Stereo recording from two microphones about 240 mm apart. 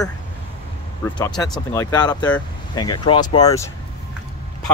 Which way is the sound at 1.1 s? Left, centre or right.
Centre.